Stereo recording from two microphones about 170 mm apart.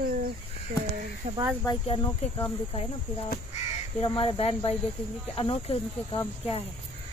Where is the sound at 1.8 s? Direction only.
30° left (ahead or behind).